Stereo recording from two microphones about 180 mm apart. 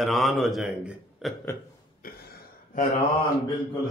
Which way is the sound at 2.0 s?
55° left (ahead or behind).